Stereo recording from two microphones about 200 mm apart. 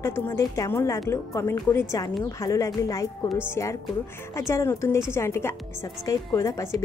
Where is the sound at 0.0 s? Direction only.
15° left (ahead or behind).